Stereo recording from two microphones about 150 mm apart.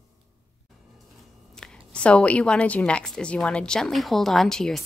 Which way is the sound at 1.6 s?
5° left (ahead or behind).